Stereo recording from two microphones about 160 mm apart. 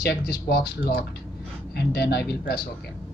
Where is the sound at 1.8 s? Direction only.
85° left.